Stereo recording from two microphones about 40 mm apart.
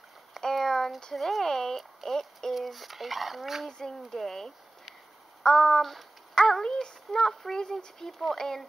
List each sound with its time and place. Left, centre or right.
0.4 s a sound: centre
1.1 s speech: centre
1.4 s speech: centre
3.7 s a child's voice: centre